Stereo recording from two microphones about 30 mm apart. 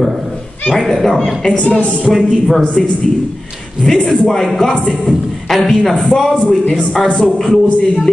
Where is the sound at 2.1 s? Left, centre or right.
Centre.